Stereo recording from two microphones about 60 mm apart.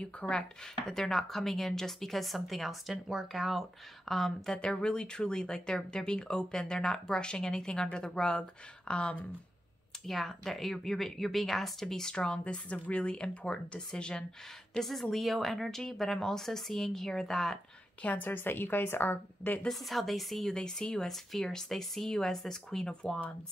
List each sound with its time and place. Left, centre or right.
0.0 s speech: centre
10.0 s speech: centre
14.7 s speech: centre
18.0 s a woman's voice: left
19.7 s speech: centre